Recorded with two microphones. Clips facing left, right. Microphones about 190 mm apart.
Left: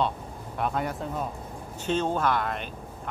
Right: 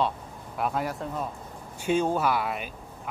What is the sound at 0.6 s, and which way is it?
Speech, centre (ahead or behind).